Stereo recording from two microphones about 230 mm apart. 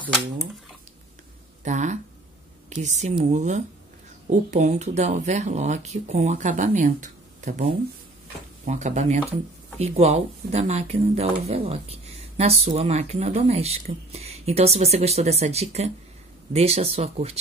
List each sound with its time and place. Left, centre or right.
1.6 s speech: right